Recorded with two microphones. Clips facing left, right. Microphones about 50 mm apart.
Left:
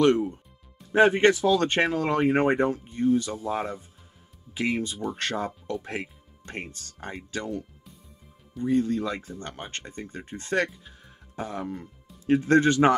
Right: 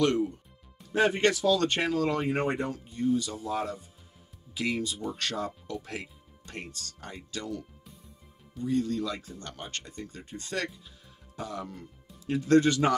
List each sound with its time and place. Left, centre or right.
0.0 s speech: left
8.6 s speech: left